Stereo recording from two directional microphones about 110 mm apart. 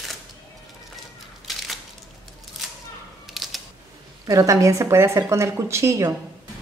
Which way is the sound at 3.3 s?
Centre (ahead or behind).